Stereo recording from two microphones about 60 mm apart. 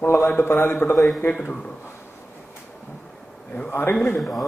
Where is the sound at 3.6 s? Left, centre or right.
Left.